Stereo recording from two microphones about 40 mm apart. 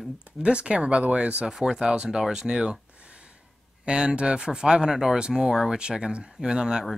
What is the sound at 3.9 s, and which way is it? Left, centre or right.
Speech, right.